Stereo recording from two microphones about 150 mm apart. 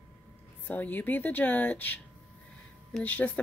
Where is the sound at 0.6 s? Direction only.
10° left (ahead or behind).